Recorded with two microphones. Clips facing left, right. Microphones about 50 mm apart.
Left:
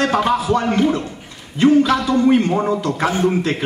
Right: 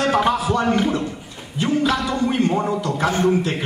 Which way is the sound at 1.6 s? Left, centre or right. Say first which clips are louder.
Left 7 dB; left.